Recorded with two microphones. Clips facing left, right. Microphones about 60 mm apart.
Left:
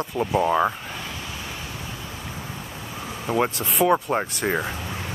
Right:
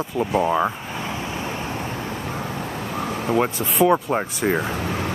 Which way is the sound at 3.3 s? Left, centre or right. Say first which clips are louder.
Right 1 dB; centre.